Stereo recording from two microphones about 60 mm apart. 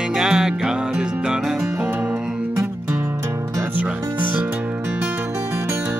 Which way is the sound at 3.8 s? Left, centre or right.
Right.